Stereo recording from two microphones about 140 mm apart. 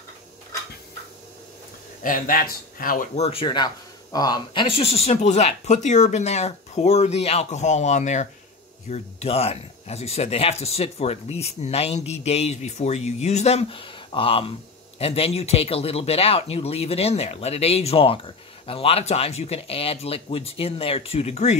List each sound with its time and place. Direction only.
2.0 s speech: 85° left
3.2 s speech: 45° left (ahead or behind)
3.4 s speech: 30° left (ahead or behind); by 21.5 s 50° left (ahead or behind)